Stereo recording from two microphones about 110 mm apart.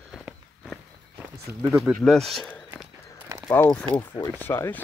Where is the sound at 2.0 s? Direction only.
Centre (ahead or behind).